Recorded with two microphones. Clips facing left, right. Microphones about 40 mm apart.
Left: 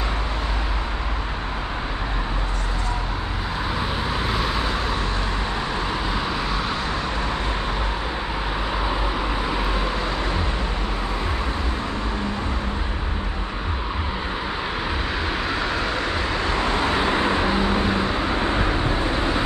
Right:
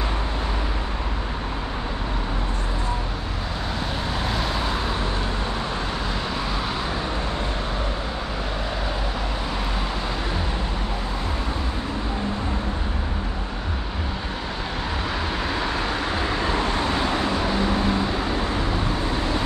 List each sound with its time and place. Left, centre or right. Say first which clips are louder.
4.2 s vehicle: left 1 dB; centre
15.5 s vehicle: left 1 dB; centre
16.7 s vehicle: left 2 dB; left